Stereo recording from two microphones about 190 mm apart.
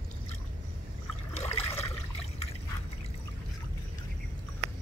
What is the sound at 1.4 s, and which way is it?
Water, 30° left (ahead or behind).